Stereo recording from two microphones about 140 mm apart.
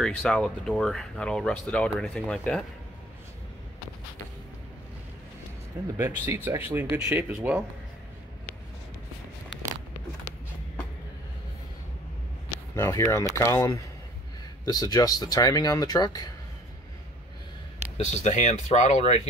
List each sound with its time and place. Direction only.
0.0 s speech: 5° left (ahead or behind)
5.9 s speech: 15° right (ahead or behind)
12.7 s speech: 20° left (ahead or behind)
17.9 s speech: 55° left (ahead or behind)